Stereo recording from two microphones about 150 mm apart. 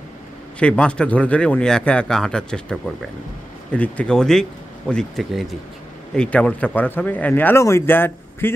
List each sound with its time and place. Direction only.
0.6 s speech: 5° left (ahead or behind)